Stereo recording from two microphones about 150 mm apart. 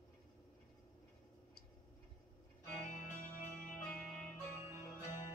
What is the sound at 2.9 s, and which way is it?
Music, 55° left (ahead or behind).